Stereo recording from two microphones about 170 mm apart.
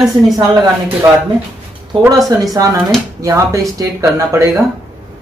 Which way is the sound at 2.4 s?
20° right (ahead or behind).